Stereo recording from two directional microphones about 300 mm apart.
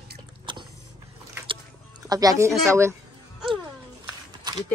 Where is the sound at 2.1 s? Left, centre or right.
Centre.